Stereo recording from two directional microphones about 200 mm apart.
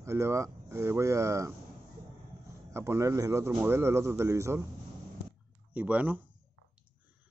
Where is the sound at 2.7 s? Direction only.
15° right (ahead or behind).